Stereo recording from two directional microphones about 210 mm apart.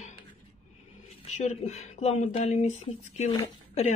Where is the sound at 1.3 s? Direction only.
35° left (ahead or behind).